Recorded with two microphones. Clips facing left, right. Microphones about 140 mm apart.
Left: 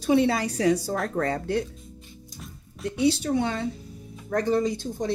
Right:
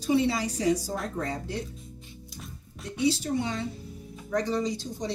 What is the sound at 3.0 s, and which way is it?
Speech, 65° left (ahead or behind).